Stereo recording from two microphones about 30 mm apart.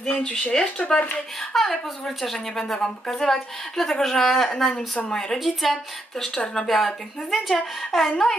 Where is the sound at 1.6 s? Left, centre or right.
Centre; by 5.4 s left.